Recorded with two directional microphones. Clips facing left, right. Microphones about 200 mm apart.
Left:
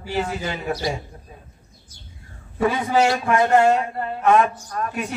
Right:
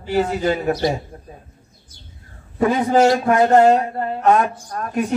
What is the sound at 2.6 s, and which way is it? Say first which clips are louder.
A man's voice: right 4 dB; 40° right (ahead or behind).